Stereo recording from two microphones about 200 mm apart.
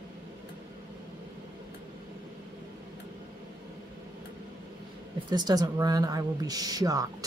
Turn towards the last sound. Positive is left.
turn(degrees=-20)  # may be behind; listen again after turning